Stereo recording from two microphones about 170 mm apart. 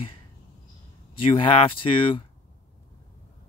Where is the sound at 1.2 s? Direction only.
30° left (ahead or behind).